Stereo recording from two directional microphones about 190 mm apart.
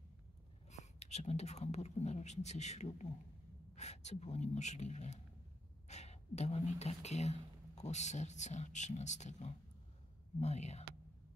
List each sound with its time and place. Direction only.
0.7 s speech: 40° left (ahead or behind)